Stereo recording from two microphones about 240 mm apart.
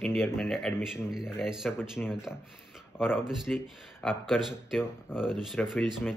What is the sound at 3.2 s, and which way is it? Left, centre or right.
Speech, centre.